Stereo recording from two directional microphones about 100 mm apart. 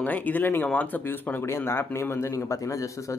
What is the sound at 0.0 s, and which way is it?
Speech, 15° left (ahead or behind).